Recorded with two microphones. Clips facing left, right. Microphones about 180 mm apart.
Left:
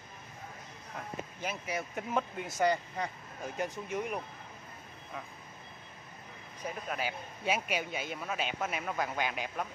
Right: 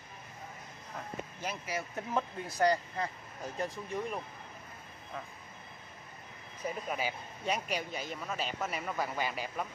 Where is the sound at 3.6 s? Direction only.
15° left (ahead or behind).